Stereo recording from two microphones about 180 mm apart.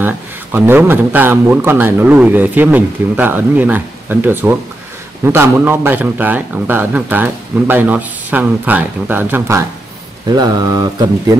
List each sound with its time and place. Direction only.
0.0 s speech: 10° right (ahead or behind)
10.3 s mantra: 20° right (ahead or behind)